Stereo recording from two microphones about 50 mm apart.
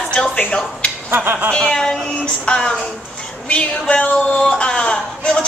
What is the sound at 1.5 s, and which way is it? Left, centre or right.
A man's voice, centre.